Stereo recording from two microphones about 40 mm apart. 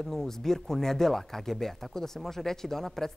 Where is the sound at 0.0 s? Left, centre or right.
Centre.